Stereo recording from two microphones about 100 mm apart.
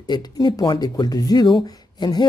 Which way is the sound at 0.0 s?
45° left (ahead or behind).